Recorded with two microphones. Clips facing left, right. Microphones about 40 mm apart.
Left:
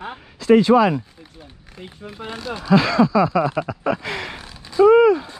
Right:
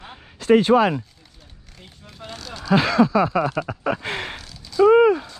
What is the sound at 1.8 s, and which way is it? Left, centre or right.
Speech, centre.